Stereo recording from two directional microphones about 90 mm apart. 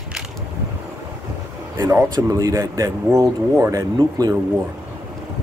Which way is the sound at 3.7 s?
45° right (ahead or behind).